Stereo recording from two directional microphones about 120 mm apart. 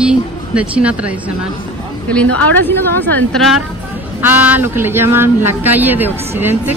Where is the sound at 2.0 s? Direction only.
10° left (ahead or behind).